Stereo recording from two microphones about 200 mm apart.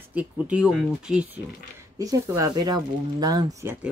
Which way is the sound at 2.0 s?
15° right (ahead or behind).